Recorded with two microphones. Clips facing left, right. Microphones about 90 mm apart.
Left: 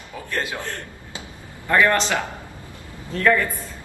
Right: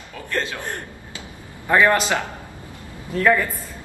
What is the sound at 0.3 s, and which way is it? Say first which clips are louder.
Speech: right 1 dB; 15° left (ahead or behind).